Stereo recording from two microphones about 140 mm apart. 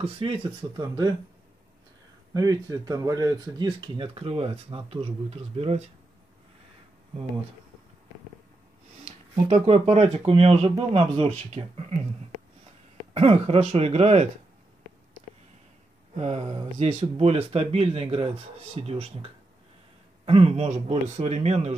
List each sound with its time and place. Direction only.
0.0 s speech: 40° right (ahead or behind)
2.3 s speech: 25° right (ahead or behind); by 5.8 s 45° right (ahead or behind)
9.0 s speech: 45° right (ahead or behind)
13.1 s speech: 45° right (ahead or behind)
16.2 s speech: 50° right (ahead or behind)